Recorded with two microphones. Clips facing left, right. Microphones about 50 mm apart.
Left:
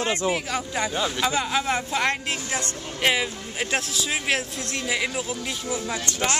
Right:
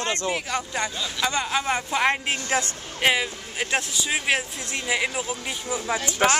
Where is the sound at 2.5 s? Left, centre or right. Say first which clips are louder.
Right 6 dB; right.